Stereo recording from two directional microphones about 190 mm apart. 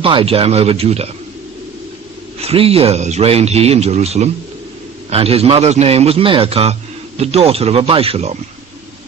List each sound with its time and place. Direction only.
0.0 s a man's voice: 30° right (ahead or behind)
2.4 s a man's voice: 30° right (ahead or behind)